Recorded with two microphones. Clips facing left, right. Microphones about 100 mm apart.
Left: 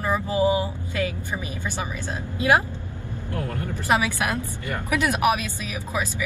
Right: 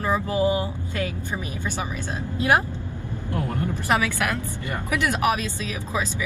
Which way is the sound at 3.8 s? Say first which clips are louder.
Left 1 dB; 15° left (ahead or behind).